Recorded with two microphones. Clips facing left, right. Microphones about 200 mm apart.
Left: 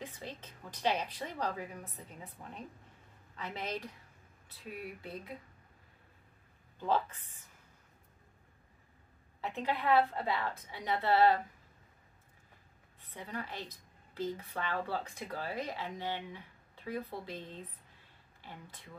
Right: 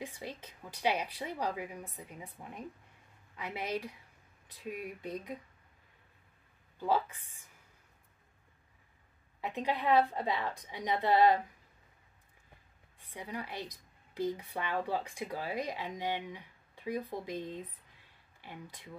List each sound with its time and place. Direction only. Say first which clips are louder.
0.0 s a woman's voice: right 2 dB; 10° right (ahead or behind)
6.8 s a woman's voice: right 1 dB; 10° right (ahead or behind)
9.4 s a woman's voice: right 1 dB; 15° right (ahead or behind)
13.0 s a woman's voice: right 1 dB; 10° right (ahead or behind)